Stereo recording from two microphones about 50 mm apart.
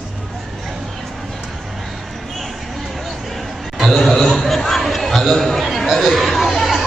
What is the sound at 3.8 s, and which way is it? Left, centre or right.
Chatter, centre.